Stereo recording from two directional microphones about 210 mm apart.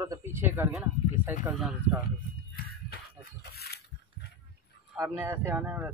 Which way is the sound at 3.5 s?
50° left (ahead or behind).